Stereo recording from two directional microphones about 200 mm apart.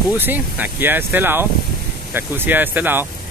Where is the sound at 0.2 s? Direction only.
10° right (ahead or behind).